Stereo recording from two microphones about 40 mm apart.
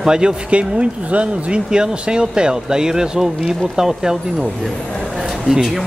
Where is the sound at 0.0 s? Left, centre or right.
Centre.